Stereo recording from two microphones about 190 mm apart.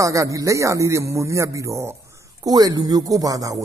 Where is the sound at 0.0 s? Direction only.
15° right (ahead or behind).